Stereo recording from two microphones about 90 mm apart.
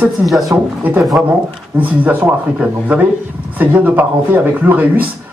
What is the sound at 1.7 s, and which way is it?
Speech, 15° right (ahead or behind).